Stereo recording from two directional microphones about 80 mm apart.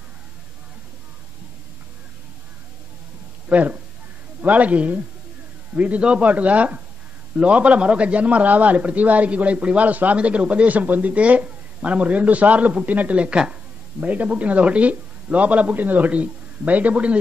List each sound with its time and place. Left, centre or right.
3.4 s a man's voice: centre